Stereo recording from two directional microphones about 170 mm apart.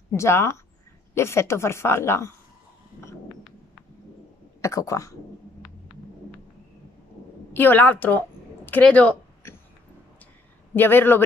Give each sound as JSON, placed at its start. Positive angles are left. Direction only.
{"t": 0.1, "sound": "speech", "side_deg": 15}
{"t": 4.6, "sound": "speech", "side_deg": 20}
{"t": 7.5, "sound": "speech", "side_deg": 10}
{"t": 8.6, "sound": "a sound", "side_deg": 10}
{"t": 10.7, "sound": "speech", "side_deg": 10}